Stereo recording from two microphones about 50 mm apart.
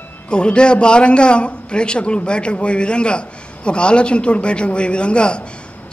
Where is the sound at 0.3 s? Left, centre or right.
Centre.